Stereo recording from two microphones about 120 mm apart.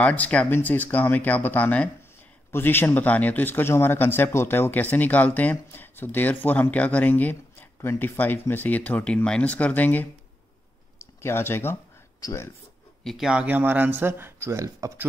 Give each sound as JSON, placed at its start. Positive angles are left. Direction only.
{"t": 0.0, "sound": "a man's voice", "side_deg": 10}
{"t": 13.0, "sound": "speech", "side_deg": 0}